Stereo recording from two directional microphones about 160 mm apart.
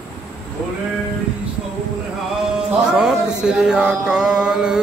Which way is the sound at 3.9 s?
5° right (ahead or behind).